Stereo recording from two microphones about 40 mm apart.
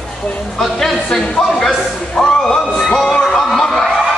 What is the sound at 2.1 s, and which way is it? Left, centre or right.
Music, centre.